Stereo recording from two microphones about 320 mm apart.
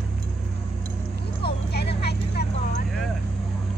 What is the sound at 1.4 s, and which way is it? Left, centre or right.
Vehicle, left.